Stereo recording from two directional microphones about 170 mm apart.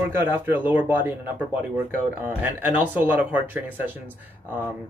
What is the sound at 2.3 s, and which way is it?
Speech, 10° right (ahead or behind).